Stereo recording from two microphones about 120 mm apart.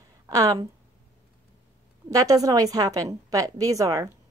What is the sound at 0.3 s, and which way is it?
Speech, 30° right (ahead or behind).